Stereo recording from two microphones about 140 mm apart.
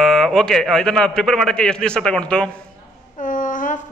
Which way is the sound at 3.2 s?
65° left (ahead or behind).